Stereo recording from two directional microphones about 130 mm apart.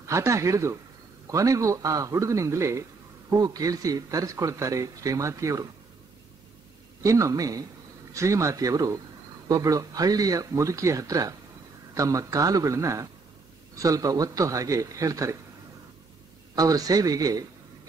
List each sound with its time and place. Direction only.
0.0 s speech: 20° right (ahead or behind)
7.0 s speech: 25° right (ahead or behind)
16.5 s speech: 30° right (ahead or behind)